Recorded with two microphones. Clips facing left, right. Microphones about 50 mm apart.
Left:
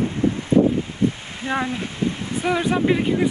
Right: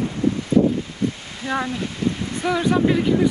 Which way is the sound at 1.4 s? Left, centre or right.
Left.